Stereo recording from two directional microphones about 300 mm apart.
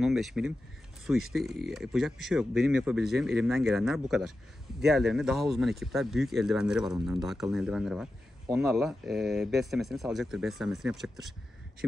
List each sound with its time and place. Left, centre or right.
0.0 s speech: centre